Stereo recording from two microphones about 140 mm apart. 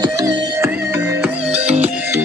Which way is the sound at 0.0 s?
25° right (ahead or behind).